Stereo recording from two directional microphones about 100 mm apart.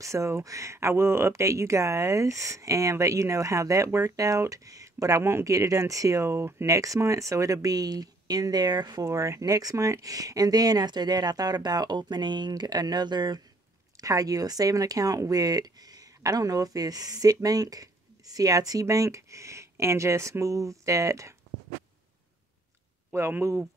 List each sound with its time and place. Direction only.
0.0 s speech: 30° right (ahead or behind)
9.1 s speech: 30° right (ahead or behind)
23.1 s speech: 25° right (ahead or behind)